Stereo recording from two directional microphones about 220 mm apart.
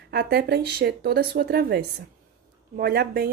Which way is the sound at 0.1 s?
45° right (ahead or behind).